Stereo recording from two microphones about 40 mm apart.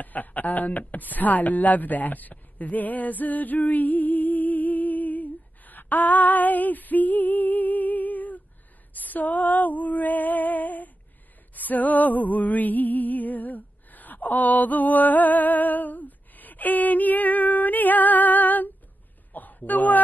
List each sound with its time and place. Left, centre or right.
0.0 s speech: left
8.9 s female singing: left
11.5 s music: left
19.3 s a sound: left